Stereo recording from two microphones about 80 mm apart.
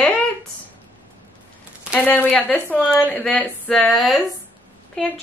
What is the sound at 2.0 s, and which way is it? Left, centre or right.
Speech, left.